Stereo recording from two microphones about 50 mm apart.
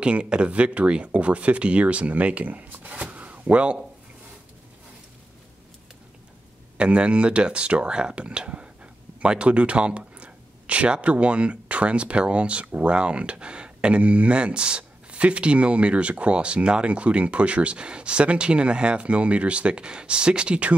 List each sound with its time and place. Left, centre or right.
0.0 s speech: right
6.8 s speech: right